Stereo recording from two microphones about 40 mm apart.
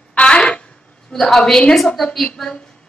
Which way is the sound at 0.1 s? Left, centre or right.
Left.